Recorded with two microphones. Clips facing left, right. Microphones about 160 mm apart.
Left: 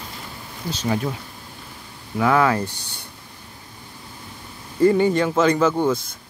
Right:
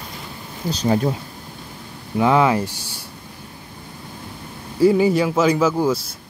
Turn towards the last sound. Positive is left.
turn(degrees=-5)  # may be behind; listen again after turning